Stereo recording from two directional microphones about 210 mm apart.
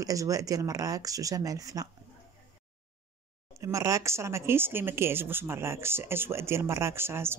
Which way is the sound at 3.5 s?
15° right (ahead or behind).